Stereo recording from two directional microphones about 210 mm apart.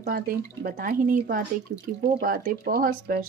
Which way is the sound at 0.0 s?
40° right (ahead or behind).